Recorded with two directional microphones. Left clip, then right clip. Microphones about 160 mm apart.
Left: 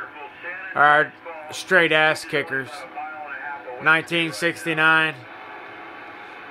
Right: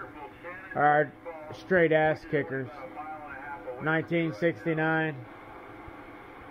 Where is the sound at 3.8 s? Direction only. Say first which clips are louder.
Left 10 dB; 5° left (ahead or behind).